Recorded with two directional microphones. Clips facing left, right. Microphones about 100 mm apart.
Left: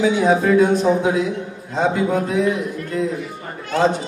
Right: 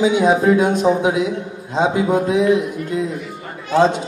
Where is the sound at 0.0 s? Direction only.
20° right (ahead or behind).